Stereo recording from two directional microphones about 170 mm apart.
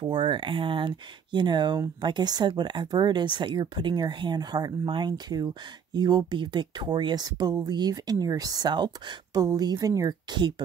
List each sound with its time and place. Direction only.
0.0 s speech: 25° right (ahead or behind)